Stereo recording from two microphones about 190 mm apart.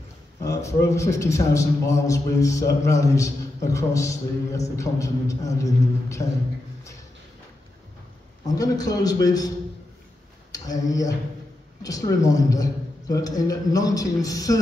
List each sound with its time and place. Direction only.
0.4 s a man's voice: 15° left (ahead or behind)
8.5 s a man's voice: 20° left (ahead or behind)
10.5 s a man's voice: 20° left (ahead or behind)